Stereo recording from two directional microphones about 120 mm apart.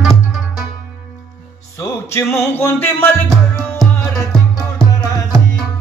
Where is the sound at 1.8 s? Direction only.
20° left (ahead or behind).